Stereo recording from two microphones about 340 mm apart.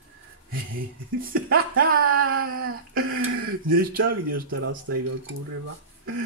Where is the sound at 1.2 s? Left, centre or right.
Right.